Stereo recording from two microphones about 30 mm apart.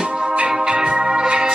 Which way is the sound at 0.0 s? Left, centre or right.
Right.